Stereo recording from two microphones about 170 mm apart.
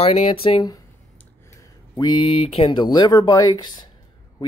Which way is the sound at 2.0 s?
30° left (ahead or behind).